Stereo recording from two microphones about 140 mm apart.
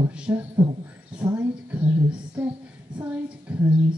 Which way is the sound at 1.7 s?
10° right (ahead or behind).